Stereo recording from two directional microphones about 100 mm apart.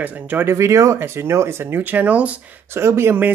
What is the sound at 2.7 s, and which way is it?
Speech, 25° right (ahead or behind).